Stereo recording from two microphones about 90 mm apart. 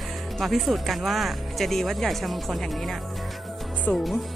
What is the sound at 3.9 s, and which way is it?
Speech, 20° left (ahead or behind).